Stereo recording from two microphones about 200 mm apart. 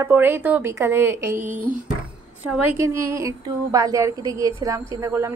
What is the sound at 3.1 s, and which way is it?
A woman's voice, 15° right (ahead or behind).